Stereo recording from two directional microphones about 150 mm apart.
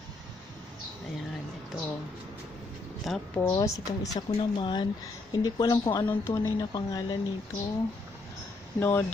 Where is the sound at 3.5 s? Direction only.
20° left (ahead or behind).